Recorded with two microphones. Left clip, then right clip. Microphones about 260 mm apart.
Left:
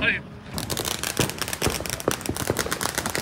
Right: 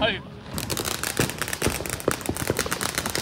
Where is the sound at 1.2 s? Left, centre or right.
Left.